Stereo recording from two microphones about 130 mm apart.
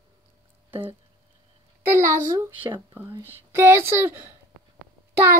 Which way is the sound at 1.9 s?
20° right (ahead or behind).